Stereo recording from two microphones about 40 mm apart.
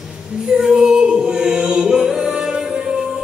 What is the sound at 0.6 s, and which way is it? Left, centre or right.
A capella, centre.